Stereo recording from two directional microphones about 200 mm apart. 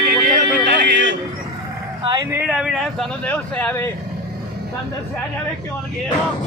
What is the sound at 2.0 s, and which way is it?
Speech, 20° right (ahead or behind).